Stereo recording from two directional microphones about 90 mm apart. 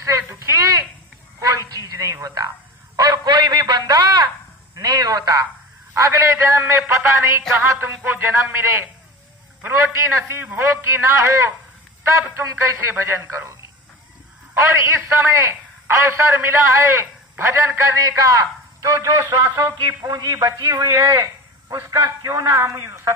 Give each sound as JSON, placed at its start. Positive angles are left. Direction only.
{"t": 0.0, "sound": "a sound", "side_deg": -35}
{"t": 1.7, "sound": "music", "side_deg": -45}
{"t": 3.0, "sound": "a sound", "side_deg": -50}
{"t": 4.7, "sound": "a man's voice", "side_deg": -50}
{"t": 9.9, "sound": "a man's voice", "side_deg": -30}
{"t": 14.5, "sound": "a man's voice", "side_deg": -25}